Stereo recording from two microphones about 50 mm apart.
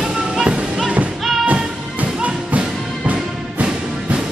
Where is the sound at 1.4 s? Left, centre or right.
Right.